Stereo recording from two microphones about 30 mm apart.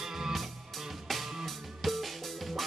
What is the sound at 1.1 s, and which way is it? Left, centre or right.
Music, centre.